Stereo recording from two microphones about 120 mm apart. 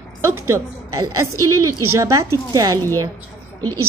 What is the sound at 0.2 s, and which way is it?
A woman's voice, 25° right (ahead or behind).